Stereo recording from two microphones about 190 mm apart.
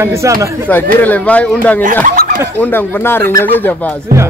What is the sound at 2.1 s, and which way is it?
Chuckle, 45° right (ahead or behind).